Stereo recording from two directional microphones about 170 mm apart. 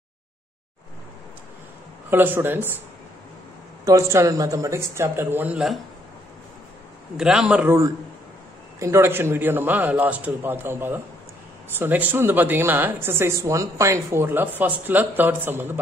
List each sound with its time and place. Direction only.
2.0 s a woman's voice: 10° right (ahead or behind)
3.8 s a woman's voice: 20° right (ahead or behind)
7.2 s a woman's voice: 5° right (ahead or behind)